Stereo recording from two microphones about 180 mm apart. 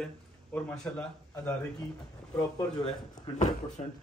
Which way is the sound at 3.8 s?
30° left (ahead or behind).